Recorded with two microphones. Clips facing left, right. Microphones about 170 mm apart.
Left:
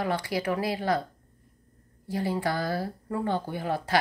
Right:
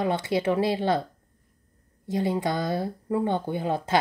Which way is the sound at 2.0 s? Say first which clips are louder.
Right 3 dB; 20° right (ahead or behind).